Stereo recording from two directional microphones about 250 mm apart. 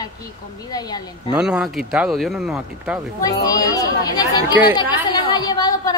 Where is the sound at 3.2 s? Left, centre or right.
Centre.